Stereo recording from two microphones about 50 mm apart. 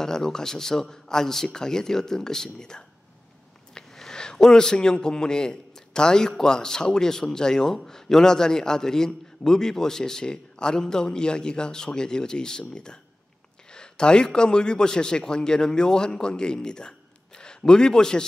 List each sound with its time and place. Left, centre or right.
0.0 s a man's voice: centre